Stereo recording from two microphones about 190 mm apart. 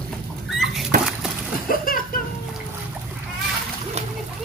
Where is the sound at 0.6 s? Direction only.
Centre (ahead or behind).